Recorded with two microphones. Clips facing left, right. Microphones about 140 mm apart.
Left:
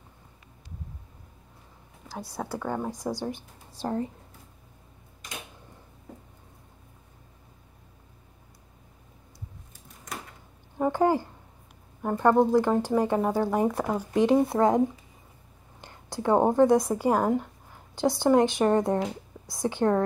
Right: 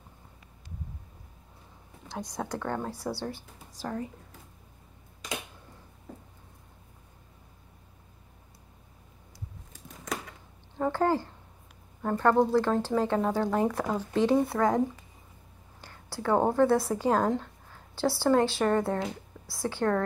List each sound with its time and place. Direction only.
2.0 s speech: 5° left (ahead or behind); by 4.1 s 30° left (ahead or behind)
10.8 s a sound: 15° left (ahead or behind)
12.0 s speech: 15° left (ahead or behind)
15.8 s a woman's voice: 20° left (ahead or behind)